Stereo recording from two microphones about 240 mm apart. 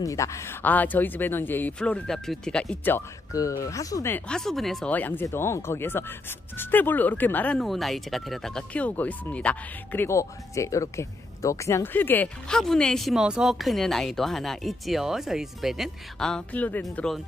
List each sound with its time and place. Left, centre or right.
0.0 s speech: centre